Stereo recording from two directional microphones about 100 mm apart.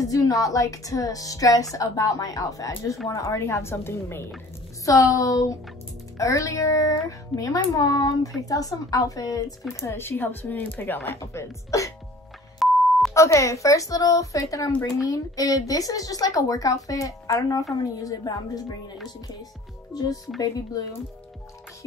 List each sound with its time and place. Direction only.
0.0 s speech: 35° left (ahead or behind)
4.8 s speech: 35° left (ahead or behind)
9.8 s speech: 25° left (ahead or behind)
11.1 s speech: 30° left (ahead or behind)
12.6 s beep: centre (ahead or behind)
13.1 s speech: 30° left (ahead or behind)
20.3 s speech: 35° left (ahead or behind)